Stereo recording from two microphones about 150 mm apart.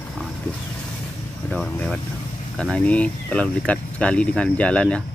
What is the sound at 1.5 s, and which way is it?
Speech, 10° left (ahead or behind).